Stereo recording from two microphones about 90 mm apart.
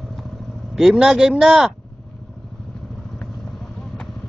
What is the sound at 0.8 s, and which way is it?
Speech, 5° right (ahead or behind).